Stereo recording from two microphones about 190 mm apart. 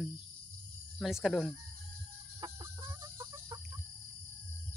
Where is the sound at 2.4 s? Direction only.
15° right (ahead or behind).